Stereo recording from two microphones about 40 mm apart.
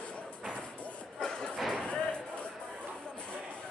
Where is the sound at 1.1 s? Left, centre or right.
Centre.